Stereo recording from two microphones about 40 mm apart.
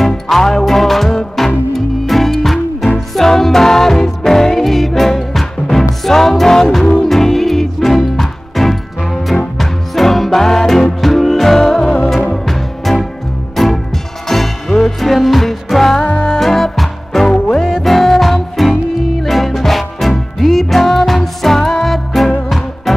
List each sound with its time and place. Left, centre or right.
0.3 s music: centre
17.3 s music: centre
17.8 s music: centre